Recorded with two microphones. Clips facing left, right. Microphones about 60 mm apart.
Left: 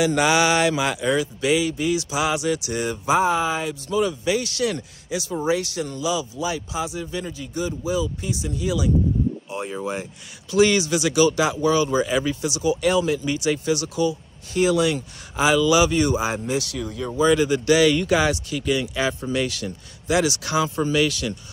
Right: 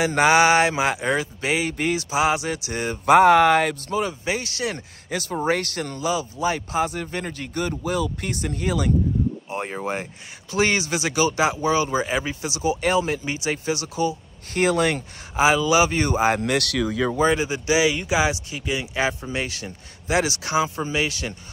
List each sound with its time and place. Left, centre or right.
0.0 s speech: right
3.1 s speech: right
3.9 s speech: right
5.1 s speech: right
9.5 s speech: right
14.5 s speech: right
15.3 s speech: right
16.3 s speech: right
17.3 s speech: right